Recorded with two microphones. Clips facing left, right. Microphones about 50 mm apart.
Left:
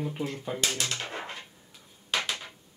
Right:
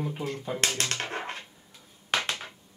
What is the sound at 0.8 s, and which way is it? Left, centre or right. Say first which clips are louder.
Dog: right 2 dB; right.